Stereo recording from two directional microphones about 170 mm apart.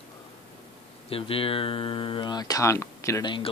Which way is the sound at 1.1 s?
35° left (ahead or behind).